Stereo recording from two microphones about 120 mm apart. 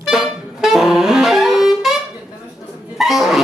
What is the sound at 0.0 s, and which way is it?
Saxophone, 5° right (ahead or behind).